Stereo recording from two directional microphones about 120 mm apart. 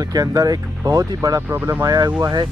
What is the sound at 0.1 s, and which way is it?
Speech, 30° right (ahead or behind).